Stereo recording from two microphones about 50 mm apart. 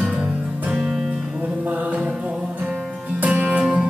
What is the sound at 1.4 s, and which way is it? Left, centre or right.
Music, right.